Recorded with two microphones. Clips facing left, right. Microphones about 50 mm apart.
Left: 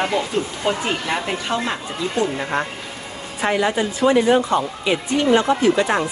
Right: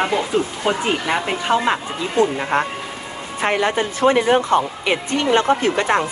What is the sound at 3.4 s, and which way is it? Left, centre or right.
Speech, right.